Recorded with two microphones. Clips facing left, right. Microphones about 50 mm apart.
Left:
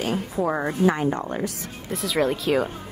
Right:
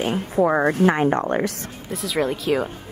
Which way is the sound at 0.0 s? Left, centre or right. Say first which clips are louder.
Right 4 dB; right.